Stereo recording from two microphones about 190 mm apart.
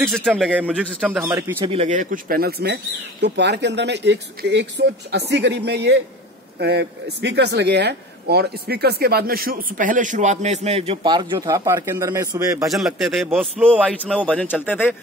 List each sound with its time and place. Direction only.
0.0 s speech: 10° right (ahead or behind)
1.6 s speech: 30° right (ahead or behind)
12.7 s a man's voice: centre (ahead or behind)